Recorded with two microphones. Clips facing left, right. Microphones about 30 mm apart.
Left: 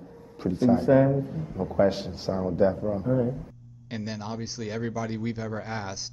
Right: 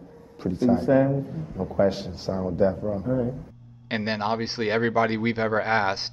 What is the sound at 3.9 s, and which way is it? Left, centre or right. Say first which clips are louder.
A man's voice: right 8 dB; right.